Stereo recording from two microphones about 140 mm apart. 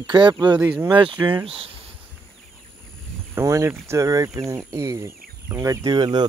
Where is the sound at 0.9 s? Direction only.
35° right (ahead or behind).